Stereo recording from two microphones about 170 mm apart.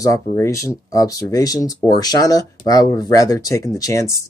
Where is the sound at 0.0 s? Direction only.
20° left (ahead or behind).